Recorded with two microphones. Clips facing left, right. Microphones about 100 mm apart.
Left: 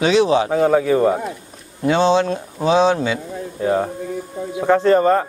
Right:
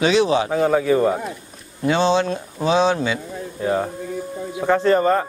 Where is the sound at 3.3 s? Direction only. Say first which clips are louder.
Left 3 dB; 40° left (ahead or behind).